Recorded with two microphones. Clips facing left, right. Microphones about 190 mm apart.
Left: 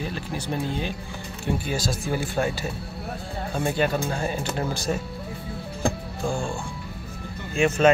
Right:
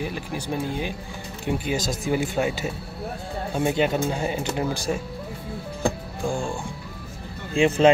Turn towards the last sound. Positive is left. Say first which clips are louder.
# right 2 dB
turn(degrees=-30)  # may be behind; listen again after turning